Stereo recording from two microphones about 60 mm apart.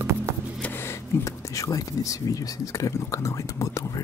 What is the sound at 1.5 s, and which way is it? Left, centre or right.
Speech, left.